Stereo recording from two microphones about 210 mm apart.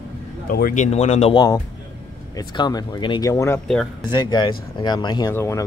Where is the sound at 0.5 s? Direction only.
40° left (ahead or behind).